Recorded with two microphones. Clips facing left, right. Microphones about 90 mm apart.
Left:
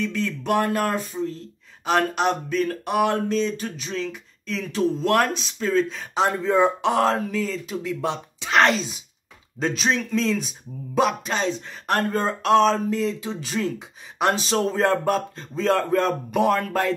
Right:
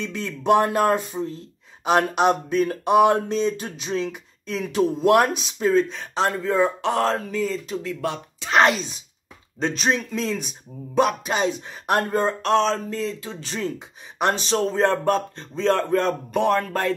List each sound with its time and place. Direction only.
0.0 s speech: 20° right (ahead or behind)
5.8 s speech: centre (ahead or behind)
6.2 s speech: 15° left (ahead or behind)
7.2 s speech: centre (ahead or behind)
7.8 s speech: 20° left (ahead or behind)
8.5 s speech: 10° right (ahead or behind)
9.6 s speech: centre (ahead or behind)
11.3 s speech: 15° right (ahead or behind); by 13.6 s 15° left (ahead or behind)
13.6 s speech: centre (ahead or behind)